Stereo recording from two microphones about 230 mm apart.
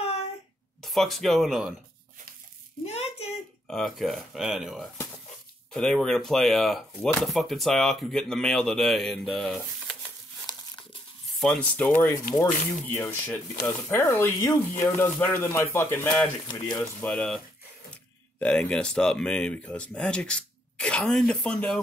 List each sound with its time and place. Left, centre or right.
0.8 s chopping: centre
2.8 s a sound: left
3.6 s chopping: centre
9.6 s a sound: centre
11.3 s chopping: centre
12.4 s speech: centre
17.0 s chopping: centre
18.4 s chopping: centre